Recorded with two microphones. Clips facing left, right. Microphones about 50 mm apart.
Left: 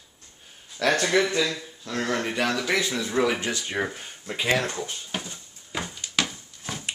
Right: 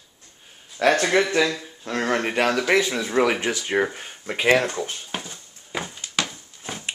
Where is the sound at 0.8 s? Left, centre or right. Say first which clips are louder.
Right 3 dB; right.